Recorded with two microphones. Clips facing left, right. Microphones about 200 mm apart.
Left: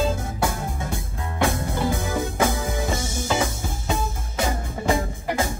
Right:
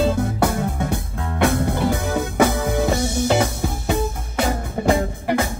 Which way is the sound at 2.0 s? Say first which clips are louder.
Right 4 dB; 65° right (ahead or behind).